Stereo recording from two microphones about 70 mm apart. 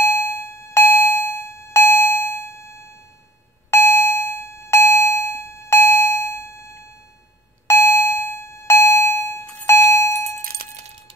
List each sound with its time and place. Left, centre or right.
0.0 s doorbell: left
3.7 s doorbell: left
7.6 s doorbell: left
9.7 s a sound: left